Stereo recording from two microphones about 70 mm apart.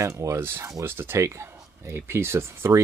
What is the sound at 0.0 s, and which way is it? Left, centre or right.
Speech, right.